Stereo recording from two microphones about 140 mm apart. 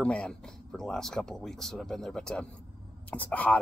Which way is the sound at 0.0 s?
5° left (ahead or behind).